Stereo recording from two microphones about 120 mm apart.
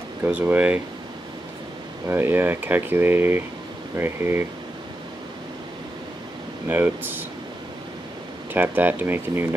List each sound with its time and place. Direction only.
0.2 s speech: 15° right (ahead or behind)
2.0 s speech: 20° right (ahead or behind)
6.7 s speech: 15° right (ahead or behind)
8.5 s speech: 15° right (ahead or behind)